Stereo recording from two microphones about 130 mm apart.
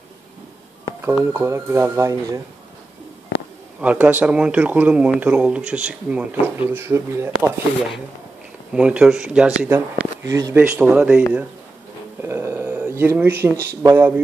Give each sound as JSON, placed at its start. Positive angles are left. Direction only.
{"t": 1.0, "sound": "speech", "side_deg": -20}
{"t": 3.8, "sound": "speech", "side_deg": -10}
{"t": 8.7, "sound": "speech", "side_deg": -5}
{"t": 9.7, "sound": "speech", "side_deg": -20}
{"t": 10.5, "sound": "speech", "side_deg": -15}
{"t": 12.2, "sound": "a sound", "side_deg": -20}
{"t": 13.9, "sound": "speech", "side_deg": -15}